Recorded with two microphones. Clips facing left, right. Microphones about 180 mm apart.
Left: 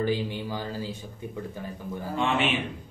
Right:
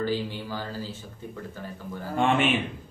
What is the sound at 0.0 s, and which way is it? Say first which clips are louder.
Speech: left 1 dB; 15° left (ahead or behind).